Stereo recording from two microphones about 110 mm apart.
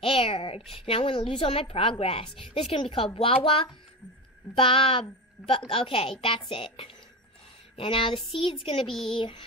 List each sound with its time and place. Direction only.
0.0 s a woman's voice: 55° left (ahead or behind)